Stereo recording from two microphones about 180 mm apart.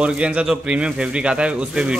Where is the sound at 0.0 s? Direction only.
5° right (ahead or behind).